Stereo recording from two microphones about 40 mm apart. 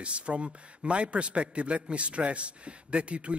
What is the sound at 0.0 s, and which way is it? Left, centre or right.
A man's voice, right.